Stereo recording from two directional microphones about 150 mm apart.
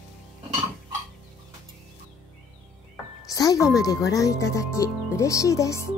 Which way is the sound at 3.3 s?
25° left (ahead or behind).